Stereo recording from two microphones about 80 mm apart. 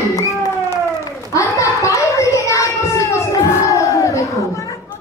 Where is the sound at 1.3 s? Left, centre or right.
Left.